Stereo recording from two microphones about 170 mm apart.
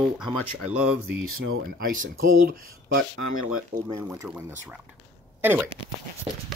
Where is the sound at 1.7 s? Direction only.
55° right (ahead or behind).